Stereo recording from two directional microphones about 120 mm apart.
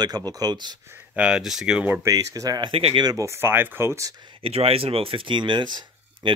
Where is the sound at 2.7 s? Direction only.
50° right (ahead or behind).